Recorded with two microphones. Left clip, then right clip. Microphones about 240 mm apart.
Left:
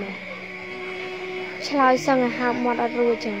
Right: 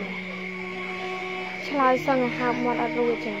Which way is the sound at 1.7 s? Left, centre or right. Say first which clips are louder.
Left 3 dB; left.